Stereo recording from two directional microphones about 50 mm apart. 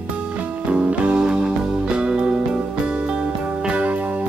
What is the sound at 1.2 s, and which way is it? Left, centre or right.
Music, centre.